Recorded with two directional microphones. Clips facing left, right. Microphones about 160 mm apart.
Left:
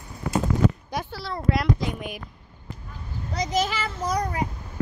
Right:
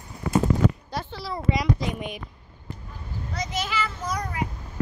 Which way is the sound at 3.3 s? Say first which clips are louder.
Left 4 dB; 40° left (ahead or behind).